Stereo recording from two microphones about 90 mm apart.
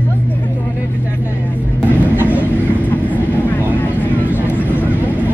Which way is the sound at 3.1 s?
20° left (ahead or behind).